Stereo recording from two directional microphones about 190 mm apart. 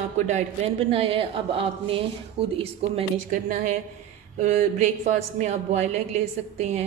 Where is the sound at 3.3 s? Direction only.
45° right (ahead or behind).